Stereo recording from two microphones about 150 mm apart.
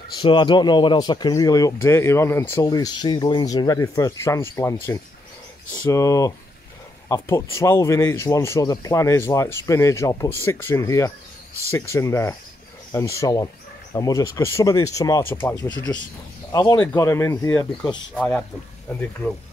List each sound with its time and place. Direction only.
0.2 s speech: 30° left (ahead or behind)
5.9 s speech: 20° left (ahead or behind)
17.8 s speech: 5° left (ahead or behind)